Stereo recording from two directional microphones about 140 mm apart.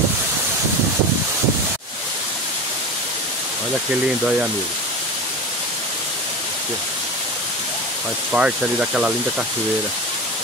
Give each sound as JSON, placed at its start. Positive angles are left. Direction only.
{"t": 8.3, "sound": "speech", "side_deg": -10}